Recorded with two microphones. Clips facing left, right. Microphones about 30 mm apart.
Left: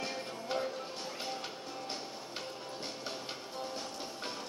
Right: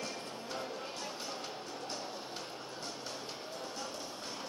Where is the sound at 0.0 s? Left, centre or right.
Left.